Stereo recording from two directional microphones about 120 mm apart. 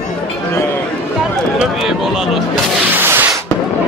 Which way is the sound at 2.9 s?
20° right (ahead or behind).